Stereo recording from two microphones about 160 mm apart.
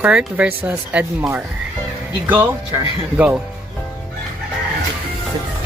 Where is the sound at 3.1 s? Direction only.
10° right (ahead or behind).